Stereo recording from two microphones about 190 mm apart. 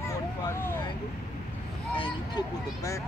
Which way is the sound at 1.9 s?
25° left (ahead or behind).